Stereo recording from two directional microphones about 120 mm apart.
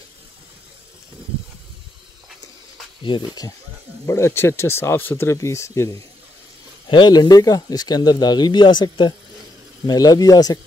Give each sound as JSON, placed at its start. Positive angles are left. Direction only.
{"t": 3.0, "sound": "speech", "side_deg": 40}
{"t": 4.0, "sound": "speech", "side_deg": 25}
{"t": 6.9, "sound": "speech", "side_deg": 40}